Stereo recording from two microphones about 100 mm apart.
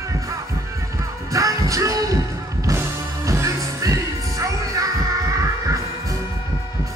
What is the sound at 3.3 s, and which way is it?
Music, 30° right (ahead or behind).